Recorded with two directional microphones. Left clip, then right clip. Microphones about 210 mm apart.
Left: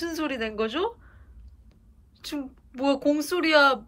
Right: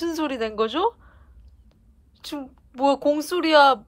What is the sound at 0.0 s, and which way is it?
A woman's voice, 25° right (ahead or behind).